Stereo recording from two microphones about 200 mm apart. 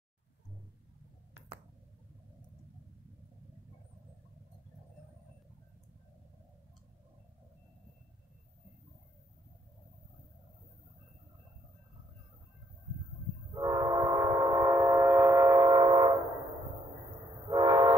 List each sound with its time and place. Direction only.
13.6 s train: 20° right (ahead or behind)
17.5 s train: 20° right (ahead or behind)